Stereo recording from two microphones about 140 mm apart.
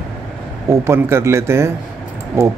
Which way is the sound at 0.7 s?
20° right (ahead or behind).